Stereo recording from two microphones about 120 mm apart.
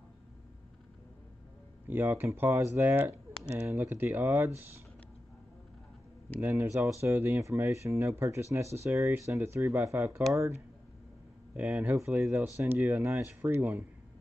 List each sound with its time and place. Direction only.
1.9 s speech: 15° right (ahead or behind)
6.4 s speech: 20° right (ahead or behind)
11.5 s speech: 15° right (ahead or behind)